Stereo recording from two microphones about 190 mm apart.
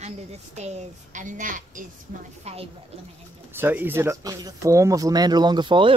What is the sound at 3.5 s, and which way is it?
Speech, 10° right (ahead or behind).